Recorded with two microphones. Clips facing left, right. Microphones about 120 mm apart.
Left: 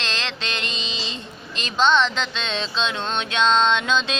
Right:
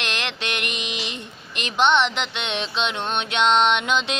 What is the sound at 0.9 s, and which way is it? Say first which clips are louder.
Female singing: right 1 dB; 25° left (ahead or behind).